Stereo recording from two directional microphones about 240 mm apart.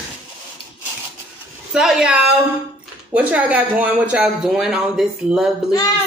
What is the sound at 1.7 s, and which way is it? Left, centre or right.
A woman's voice, centre.